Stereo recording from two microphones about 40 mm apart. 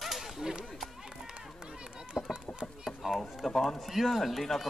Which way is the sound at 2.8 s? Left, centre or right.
Centre.